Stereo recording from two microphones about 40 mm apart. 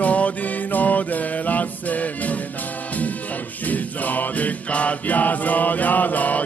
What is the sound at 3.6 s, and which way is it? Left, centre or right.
Music, left.